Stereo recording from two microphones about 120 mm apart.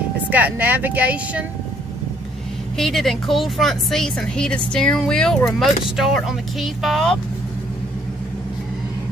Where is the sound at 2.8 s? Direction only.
Centre (ahead or behind).